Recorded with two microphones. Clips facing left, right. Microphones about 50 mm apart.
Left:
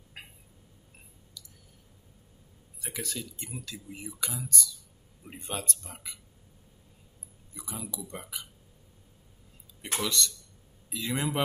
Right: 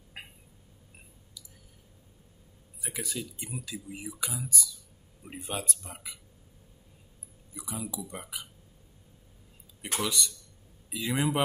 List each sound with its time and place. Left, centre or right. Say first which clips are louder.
0.2 s a sound: right 2 dB; centre
2.8 s speech: right 1 dB; centre
7.5 s speech: right 3 dB; centre
9.9 s speech: left 1 dB; centre